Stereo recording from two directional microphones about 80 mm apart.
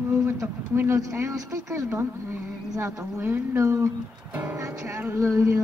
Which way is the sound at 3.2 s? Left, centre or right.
Right.